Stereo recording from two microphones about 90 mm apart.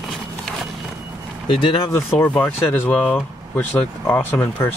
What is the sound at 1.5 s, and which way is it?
Speech, 75° left (ahead or behind).